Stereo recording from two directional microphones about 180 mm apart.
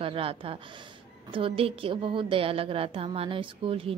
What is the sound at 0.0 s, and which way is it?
A woman's voice, 30° right (ahead or behind).